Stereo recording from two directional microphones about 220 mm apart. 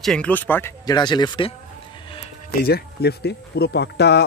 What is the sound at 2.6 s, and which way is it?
Speech, 45° left (ahead or behind).